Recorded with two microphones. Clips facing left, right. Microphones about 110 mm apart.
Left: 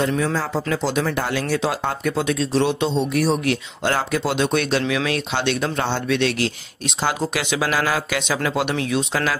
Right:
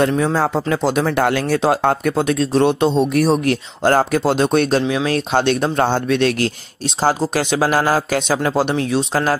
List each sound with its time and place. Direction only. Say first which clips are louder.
0.1 s speech: right 5 dB; 45° right (ahead or behind)